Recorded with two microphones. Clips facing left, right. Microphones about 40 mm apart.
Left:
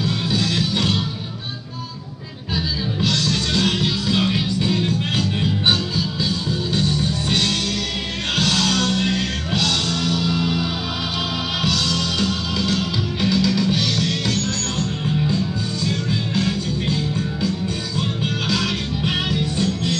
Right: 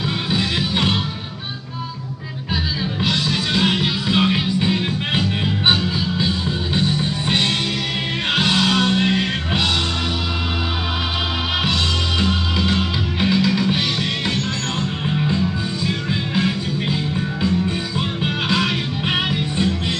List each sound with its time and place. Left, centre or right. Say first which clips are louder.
0.0 s music: even; right
2.5 s music: even; centre
11.6 s music: right 1 dB; right
18.2 s music: right 4 dB; right